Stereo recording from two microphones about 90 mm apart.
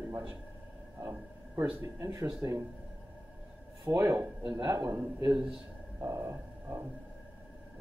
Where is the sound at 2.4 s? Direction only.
30° right (ahead or behind).